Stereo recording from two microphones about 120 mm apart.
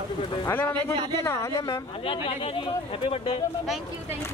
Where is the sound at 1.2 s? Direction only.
25° left (ahead or behind).